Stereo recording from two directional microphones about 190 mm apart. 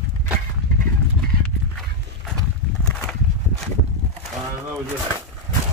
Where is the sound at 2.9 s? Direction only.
5° left (ahead or behind).